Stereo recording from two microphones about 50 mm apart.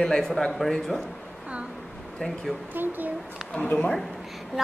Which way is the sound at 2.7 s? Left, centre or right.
Right.